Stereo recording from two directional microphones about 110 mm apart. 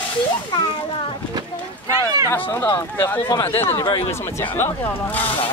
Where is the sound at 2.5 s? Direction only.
25° left (ahead or behind).